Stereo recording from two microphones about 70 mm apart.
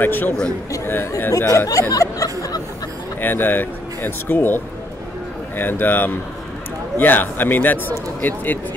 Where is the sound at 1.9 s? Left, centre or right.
Left.